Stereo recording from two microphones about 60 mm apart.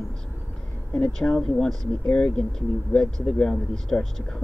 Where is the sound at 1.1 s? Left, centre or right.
Centre.